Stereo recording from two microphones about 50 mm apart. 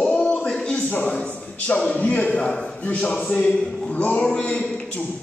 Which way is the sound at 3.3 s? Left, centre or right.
Centre.